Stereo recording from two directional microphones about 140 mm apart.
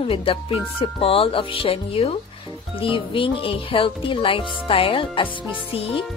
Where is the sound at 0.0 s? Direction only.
40° left (ahead or behind).